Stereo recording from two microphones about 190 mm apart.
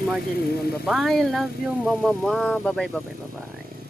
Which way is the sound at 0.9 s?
Centre (ahead or behind).